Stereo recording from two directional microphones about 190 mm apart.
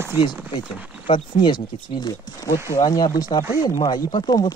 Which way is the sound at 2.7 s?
20° left (ahead or behind).